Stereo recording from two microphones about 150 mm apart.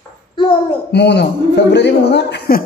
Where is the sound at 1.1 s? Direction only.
90° left.